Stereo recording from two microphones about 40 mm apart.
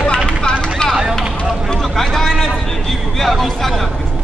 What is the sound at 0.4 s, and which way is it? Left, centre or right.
Vehicle, centre.